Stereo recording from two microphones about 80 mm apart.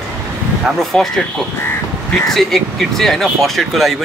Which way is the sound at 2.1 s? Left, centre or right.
Centre.